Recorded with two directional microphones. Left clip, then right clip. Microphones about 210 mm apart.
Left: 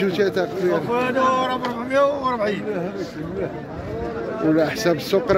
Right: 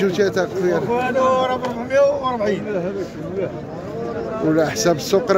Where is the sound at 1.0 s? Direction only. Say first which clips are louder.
Right 3 dB; 15° right (ahead or behind).